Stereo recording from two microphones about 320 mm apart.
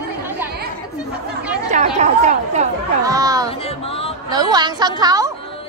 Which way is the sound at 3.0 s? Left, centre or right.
Centre.